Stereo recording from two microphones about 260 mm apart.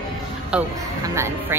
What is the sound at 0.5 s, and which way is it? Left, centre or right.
Speech, centre.